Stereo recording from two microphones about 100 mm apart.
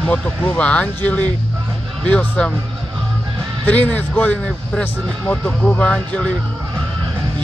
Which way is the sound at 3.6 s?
15° left (ahead or behind).